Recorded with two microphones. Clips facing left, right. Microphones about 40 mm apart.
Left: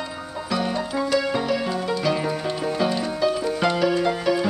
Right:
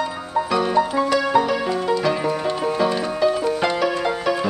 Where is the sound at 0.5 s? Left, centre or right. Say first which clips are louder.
Right 5 dB; centre.